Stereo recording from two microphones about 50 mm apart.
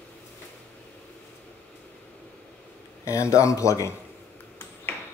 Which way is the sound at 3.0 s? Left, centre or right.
Left.